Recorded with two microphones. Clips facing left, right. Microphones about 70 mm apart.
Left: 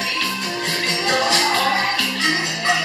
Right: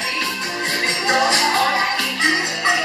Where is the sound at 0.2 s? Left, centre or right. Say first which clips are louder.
Even; right.